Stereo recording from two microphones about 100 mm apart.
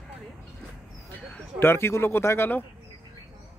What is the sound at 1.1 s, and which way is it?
Speech, 20° left (ahead or behind).